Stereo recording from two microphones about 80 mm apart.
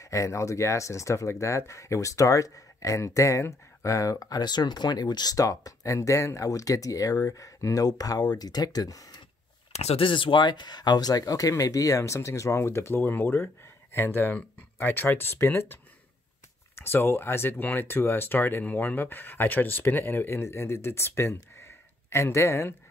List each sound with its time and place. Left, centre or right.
0.0 s speech: left
10.0 s speech: left